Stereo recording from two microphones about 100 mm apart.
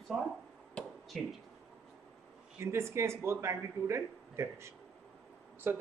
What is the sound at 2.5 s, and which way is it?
Speech, 25° right (ahead or behind).